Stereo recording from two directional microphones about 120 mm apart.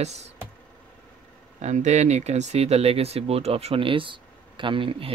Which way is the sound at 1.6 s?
75° right (ahead or behind).